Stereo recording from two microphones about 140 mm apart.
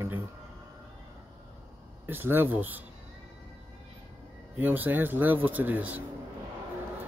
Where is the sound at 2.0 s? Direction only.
15° right (ahead or behind).